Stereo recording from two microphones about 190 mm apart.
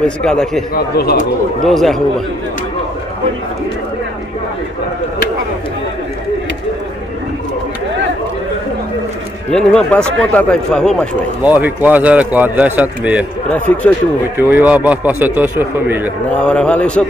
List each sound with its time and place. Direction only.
0.0 s speech: 5° left (ahead or behind)
0.9 s a man's voice: 55° left (ahead or behind)
1.6 s speech: centre (ahead or behind)
9.5 s speech: 5° left (ahead or behind)
11.4 s a man's voice: 10° right (ahead or behind)
13.5 s a man's voice: 10° left (ahead or behind)
14.3 s a man's voice: 10° right (ahead or behind)
16.3 s speech: 5° left (ahead or behind)